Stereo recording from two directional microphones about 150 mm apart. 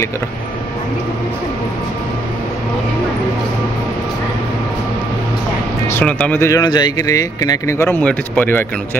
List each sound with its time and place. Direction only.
5.9 s speech: 10° left (ahead or behind)